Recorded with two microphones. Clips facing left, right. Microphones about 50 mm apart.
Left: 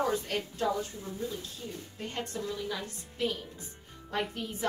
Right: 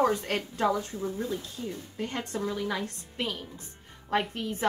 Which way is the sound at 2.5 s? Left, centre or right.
Right.